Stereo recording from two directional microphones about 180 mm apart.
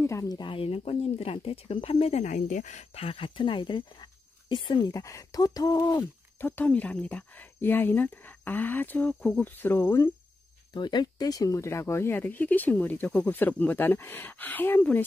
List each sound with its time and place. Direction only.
0.0 s speech: 15° left (ahead or behind)